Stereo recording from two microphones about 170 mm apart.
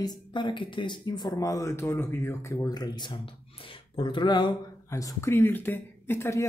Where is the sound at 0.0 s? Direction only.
25° left (ahead or behind).